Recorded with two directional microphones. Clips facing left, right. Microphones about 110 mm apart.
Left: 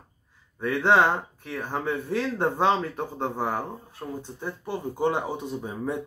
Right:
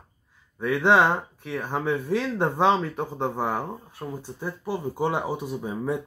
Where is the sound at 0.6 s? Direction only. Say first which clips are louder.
Right 1 dB; 15° right (ahead or behind).